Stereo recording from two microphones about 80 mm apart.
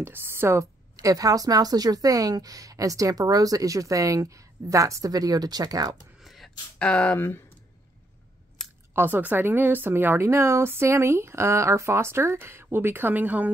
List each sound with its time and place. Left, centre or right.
0.0 s speech: right
0.9 s speech: right
6.2 s a sound: centre
6.8 s speech: centre
8.6 s a sound: centre
8.9 s speech: right